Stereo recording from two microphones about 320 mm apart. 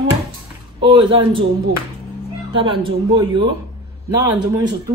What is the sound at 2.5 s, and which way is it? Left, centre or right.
Speech, centre.